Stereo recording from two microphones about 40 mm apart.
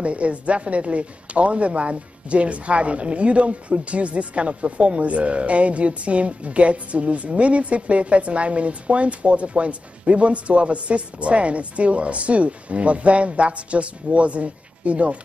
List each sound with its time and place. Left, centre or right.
0.0 s a woman's voice: right